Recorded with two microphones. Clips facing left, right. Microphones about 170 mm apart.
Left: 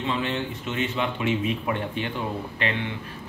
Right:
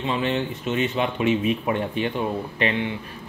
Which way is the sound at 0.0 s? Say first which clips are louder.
Right 3 dB; 20° right (ahead or behind).